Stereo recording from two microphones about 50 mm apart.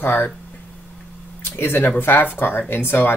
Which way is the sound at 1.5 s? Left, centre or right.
Left.